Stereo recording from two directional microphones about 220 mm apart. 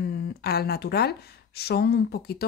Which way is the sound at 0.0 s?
45° left (ahead or behind).